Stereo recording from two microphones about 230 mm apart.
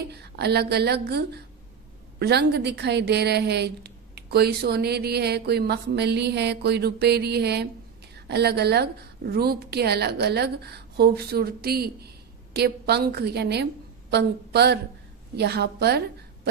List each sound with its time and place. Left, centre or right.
0.1 s a woman's voice: right